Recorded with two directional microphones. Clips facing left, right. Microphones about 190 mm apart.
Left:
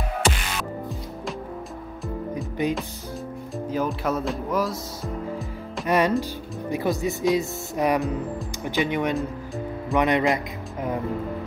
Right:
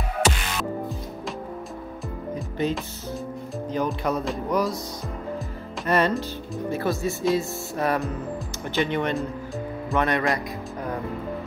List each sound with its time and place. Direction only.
2.6 s speech: 15° left (ahead or behind)
5.9 s speech: 10° left (ahead or behind)